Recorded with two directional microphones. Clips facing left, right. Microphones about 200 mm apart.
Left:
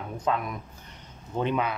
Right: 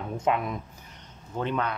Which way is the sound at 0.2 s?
25° right (ahead or behind).